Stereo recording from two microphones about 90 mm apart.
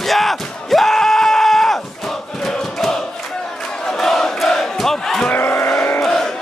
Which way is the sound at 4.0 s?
5° left (ahead or behind).